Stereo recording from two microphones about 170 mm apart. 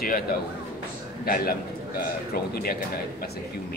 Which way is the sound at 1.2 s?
60° left (ahead or behind).